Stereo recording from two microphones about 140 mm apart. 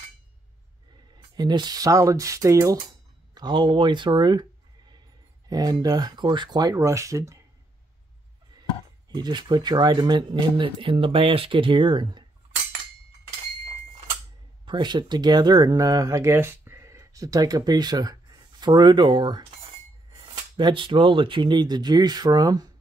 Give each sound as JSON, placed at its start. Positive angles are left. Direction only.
{"t": 1.3, "sound": "speech", "side_deg": -30}
{"t": 3.3, "sound": "speech", "side_deg": -35}
{"t": 5.5, "sound": "speech", "side_deg": -30}
{"t": 9.1, "sound": "speech", "side_deg": -30}
{"t": 14.7, "sound": "speech", "side_deg": -35}
{"t": 20.5, "sound": "speech", "side_deg": -35}